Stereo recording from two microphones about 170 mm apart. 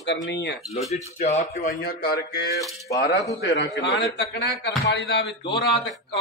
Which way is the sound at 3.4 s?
90° left.